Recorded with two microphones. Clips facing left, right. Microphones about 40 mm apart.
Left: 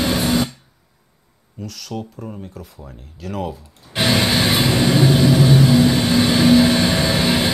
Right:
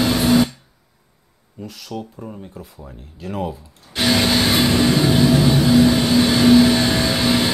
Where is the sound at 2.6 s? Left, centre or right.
Left.